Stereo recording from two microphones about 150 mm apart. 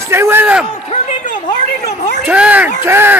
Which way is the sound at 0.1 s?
15° right (ahead or behind).